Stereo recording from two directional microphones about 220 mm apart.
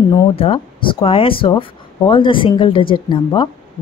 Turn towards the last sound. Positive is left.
turn(degrees=20)  # may be behind; listen again after turning